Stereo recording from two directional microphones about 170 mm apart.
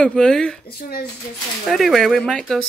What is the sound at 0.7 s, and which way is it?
Speech, 65° left (ahead or behind).